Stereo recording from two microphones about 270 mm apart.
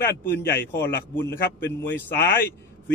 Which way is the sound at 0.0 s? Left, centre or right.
Centre.